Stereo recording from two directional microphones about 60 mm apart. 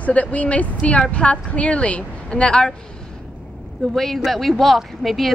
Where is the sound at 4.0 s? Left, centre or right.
Centre.